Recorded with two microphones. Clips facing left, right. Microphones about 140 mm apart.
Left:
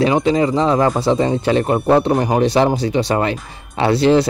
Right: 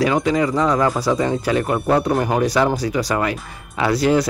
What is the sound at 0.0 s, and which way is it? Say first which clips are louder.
Speech: left 3 dB; 25° left (ahead or behind).